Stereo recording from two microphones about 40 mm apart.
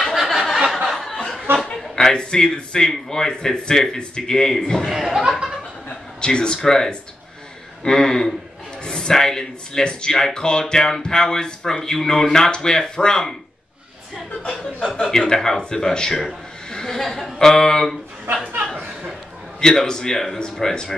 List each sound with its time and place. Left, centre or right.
0.1 s a sound: centre
0.7 s chuckle: centre
1.8 s a sound: centre
2.1 s speech: left
4.8 s speech: centre
5.6 s chuckle: left
7.8 s speech: centre
14.4 s speech: left
19.6 s speech: centre